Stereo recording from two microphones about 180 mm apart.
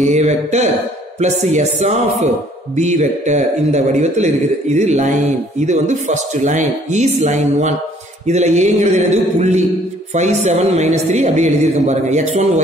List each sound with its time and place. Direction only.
0.0 s a man's voice: 40° right (ahead or behind)